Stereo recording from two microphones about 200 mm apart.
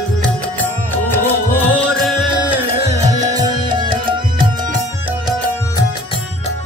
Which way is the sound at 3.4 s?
20° right (ahead or behind).